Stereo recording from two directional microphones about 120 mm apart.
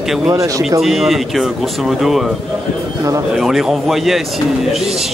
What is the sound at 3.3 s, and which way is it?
Speech, centre (ahead or behind).